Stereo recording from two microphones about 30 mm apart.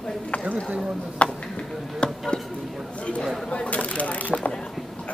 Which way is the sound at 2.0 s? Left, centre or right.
Left.